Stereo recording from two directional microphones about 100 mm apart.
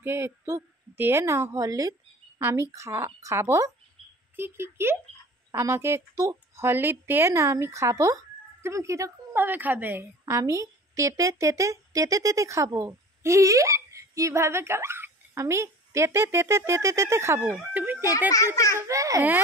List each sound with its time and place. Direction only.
0.0 s a woman's voice: 25° right (ahead or behind)
17.4 s speech: 15° right (ahead or behind)
18.3 s a child's voice: 35° left (ahead or behind)
18.8 s a woman's voice: 30° right (ahead or behind)